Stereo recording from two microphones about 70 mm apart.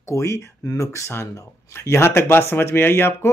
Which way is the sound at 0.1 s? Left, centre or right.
Left.